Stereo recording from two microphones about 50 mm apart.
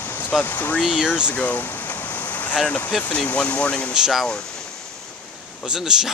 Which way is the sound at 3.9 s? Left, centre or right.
Centre.